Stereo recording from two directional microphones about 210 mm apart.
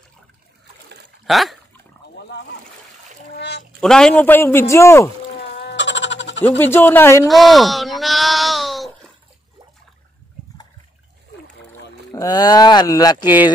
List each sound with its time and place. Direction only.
1.2 s speech: centre (ahead or behind)
3.3 s a sound: 50° left (ahead or behind)
3.8 s a man's voice: 5° left (ahead or behind)
5.5 s goat: 50° left (ahead or behind)
6.4 s a man's voice: 10° left (ahead or behind)
7.2 s bleat: centre (ahead or behind)
12.1 s speech: 15° left (ahead or behind)